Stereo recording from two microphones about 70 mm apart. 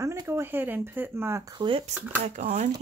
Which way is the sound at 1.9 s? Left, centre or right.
Right.